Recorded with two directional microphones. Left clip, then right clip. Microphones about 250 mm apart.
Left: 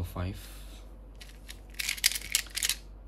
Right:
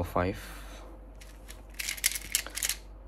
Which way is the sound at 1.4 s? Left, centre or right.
Centre.